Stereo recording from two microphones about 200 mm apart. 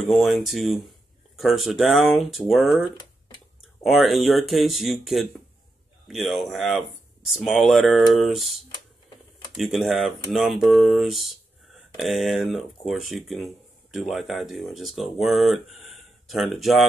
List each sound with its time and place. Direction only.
0.1 s speech: centre (ahead or behind)
3.8 s speech: centre (ahead or behind)